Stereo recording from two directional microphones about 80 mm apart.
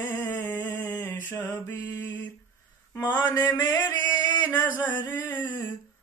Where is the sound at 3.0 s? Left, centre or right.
Left.